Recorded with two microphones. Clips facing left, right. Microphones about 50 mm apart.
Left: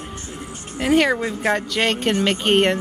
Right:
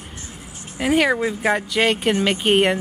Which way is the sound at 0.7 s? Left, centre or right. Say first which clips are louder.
Left 1 dB; centre.